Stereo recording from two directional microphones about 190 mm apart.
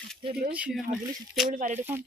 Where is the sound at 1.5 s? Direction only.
40° right (ahead or behind).